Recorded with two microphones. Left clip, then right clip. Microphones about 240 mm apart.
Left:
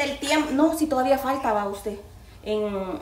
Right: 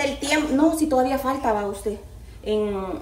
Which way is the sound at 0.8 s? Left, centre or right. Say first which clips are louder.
Right 1 dB; centre.